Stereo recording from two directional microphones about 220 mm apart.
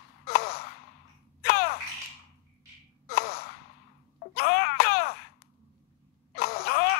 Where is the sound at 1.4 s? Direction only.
45° left (ahead or behind).